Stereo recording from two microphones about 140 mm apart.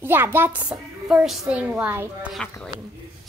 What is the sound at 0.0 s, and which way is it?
A child's voice, 15° right (ahead or behind).